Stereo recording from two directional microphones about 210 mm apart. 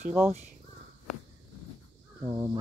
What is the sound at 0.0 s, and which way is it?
Speech, 10° right (ahead or behind).